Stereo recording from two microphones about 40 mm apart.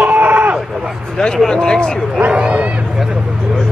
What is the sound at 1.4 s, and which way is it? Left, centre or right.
Speech, centre.